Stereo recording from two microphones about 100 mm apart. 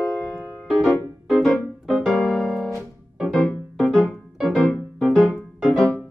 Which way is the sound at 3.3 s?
10° left (ahead or behind).